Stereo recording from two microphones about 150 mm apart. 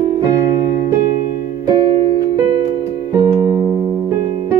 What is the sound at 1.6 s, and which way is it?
Music, 25° right (ahead or behind).